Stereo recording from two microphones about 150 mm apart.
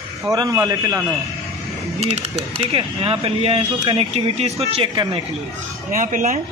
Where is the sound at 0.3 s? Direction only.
25° right (ahead or behind).